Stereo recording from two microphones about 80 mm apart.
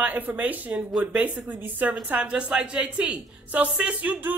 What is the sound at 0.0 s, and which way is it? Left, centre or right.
A woman's voice, right.